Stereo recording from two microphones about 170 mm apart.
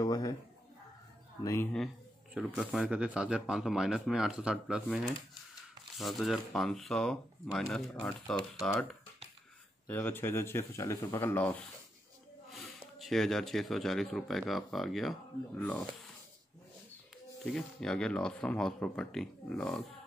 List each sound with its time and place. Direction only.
0.0 s a sound: 20° left (ahead or behind)
1.4 s speech: 15° left (ahead or behind)
2.3 s speech: 5° right (ahead or behind)
9.8 s speech: 10° left (ahead or behind)
12.4 s speech: centre (ahead or behind)
17.5 s speech: 5° left (ahead or behind)